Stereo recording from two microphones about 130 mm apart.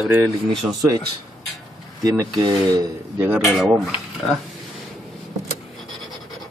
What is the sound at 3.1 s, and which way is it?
Speech, 15° right (ahead or behind).